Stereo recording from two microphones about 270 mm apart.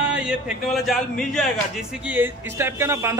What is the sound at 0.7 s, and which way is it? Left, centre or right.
A man's voice, centre.